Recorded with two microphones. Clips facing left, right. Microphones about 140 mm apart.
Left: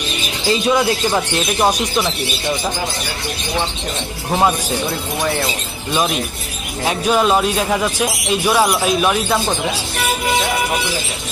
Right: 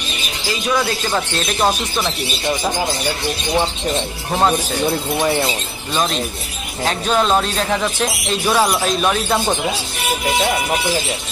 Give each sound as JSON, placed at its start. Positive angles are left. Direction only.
{"t": 0.5, "sound": "a man's voice", "side_deg": 20}
{"t": 4.3, "sound": "a man's voice", "side_deg": 5}
{"t": 5.9, "sound": "a man's voice", "side_deg": 10}